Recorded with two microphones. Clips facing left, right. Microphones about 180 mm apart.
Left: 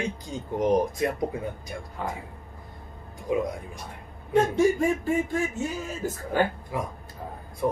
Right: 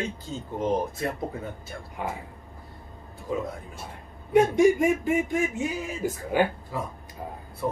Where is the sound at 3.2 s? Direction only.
15° left (ahead or behind).